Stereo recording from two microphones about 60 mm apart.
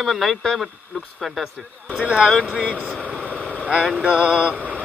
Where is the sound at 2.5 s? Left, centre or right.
Centre.